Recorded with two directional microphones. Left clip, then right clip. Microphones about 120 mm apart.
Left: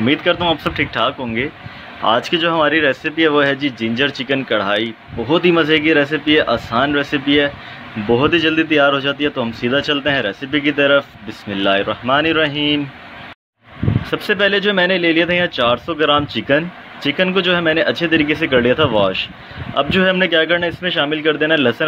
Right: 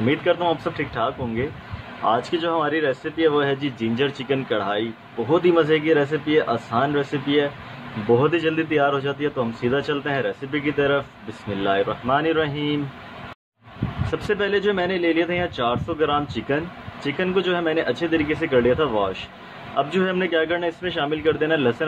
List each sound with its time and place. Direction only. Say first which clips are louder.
0.0 s speech: left 5 dB; 50° left (ahead or behind)
8.1 s speech: left 5 dB; 50° left (ahead or behind)
14.1 s speech: left 6 dB; 45° left (ahead or behind)